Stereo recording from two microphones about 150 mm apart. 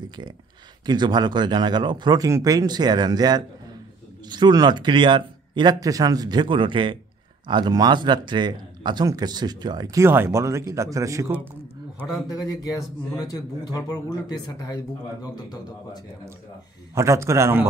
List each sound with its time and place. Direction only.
0.8 s speech: 30° right (ahead or behind)
13.3 s speech: 25° left (ahead or behind)
16.9 s speech: 20° right (ahead or behind)